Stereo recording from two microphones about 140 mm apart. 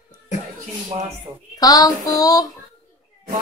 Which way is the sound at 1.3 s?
30° right (ahead or behind).